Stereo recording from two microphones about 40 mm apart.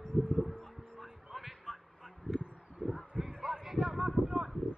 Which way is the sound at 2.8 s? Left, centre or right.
Left.